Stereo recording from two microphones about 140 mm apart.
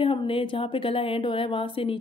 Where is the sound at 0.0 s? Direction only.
40° left (ahead or behind).